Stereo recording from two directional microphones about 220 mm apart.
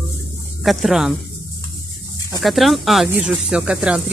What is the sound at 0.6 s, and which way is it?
Speech, centre (ahead or behind).